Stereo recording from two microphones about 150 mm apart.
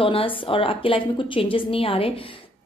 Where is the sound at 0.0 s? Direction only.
35° left (ahead or behind).